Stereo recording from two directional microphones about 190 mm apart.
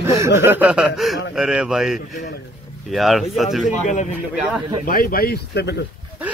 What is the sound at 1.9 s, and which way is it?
Speech, 50° left (ahead or behind).